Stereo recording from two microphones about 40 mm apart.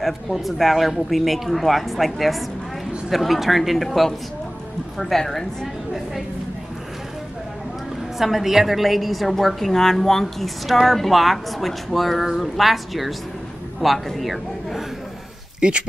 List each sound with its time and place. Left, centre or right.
0.0 s speech: centre
8.2 s a man's voice: centre
15.6 s speech: right